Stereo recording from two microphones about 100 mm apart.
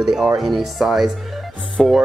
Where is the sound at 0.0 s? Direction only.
5° right (ahead or behind).